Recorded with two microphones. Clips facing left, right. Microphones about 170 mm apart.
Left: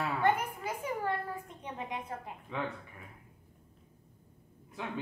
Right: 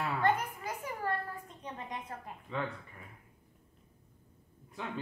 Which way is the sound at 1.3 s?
10° left (ahead or behind).